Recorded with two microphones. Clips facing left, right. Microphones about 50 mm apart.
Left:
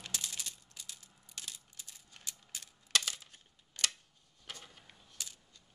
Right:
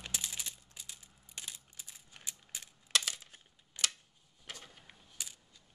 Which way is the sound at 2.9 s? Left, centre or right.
Centre.